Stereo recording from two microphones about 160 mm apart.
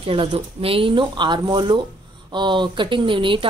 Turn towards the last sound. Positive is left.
turn(degrees=-30)  # may be behind; listen again after turning